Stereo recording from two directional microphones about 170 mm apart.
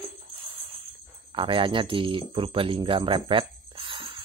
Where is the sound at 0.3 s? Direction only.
35° right (ahead or behind).